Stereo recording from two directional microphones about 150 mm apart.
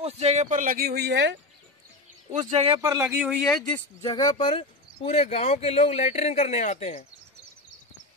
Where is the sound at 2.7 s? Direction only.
20° right (ahead or behind).